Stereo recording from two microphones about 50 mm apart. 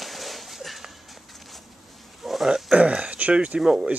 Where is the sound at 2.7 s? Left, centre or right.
Right.